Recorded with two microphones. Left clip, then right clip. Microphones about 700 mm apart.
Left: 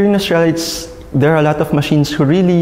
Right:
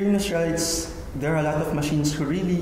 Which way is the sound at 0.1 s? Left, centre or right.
Left.